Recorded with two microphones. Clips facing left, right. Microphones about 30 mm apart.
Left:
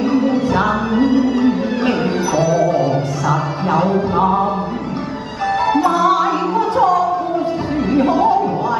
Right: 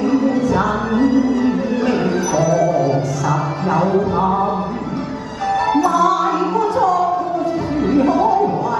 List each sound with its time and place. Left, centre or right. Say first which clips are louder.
0.0 s music: even; left
2.3 s music: left 1 dB; left
5.8 s music: left 1 dB; left
7.9 s music: left 1 dB; left